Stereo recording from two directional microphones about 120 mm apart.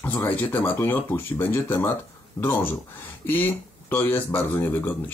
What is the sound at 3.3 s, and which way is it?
Speech, 15° left (ahead or behind).